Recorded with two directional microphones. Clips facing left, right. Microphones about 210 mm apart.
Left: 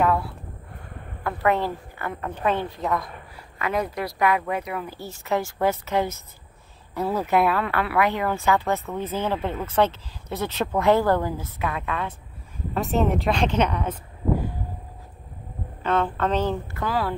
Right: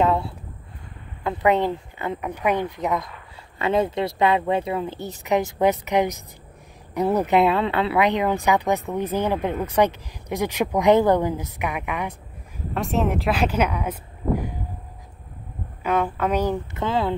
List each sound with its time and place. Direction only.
0.0 s a sound: 25° right (ahead or behind)
1.2 s speech: 20° right (ahead or behind)
12.7 s speech: centre (ahead or behind)
15.8 s speech: 10° right (ahead or behind)
16.8 s speech: 20° right (ahead or behind)